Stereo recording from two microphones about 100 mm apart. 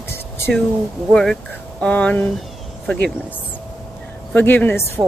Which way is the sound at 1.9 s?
15° left (ahead or behind).